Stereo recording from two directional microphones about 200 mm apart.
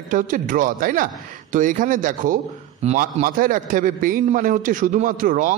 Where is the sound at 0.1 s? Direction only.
40° right (ahead or behind).